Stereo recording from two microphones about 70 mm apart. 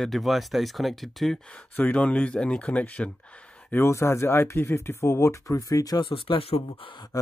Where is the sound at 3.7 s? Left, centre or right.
Left.